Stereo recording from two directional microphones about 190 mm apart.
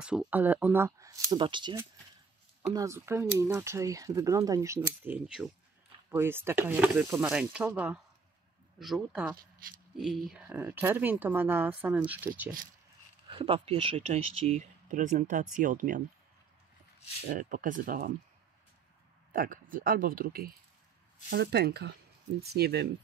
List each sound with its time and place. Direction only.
0.0 s speech: 5° right (ahead or behind)
13.3 s speech: 30° right (ahead or behind); by 16.0 s 45° right (ahead or behind)
17.3 s speech: 45° right (ahead or behind)
19.3 s speech: 50° right (ahead or behind)